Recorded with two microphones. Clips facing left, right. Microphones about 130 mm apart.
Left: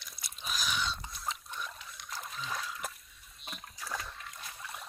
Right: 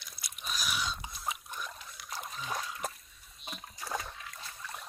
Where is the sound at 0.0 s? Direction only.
Centre (ahead or behind).